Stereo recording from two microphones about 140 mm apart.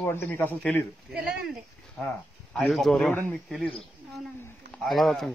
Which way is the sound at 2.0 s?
10° left (ahead or behind).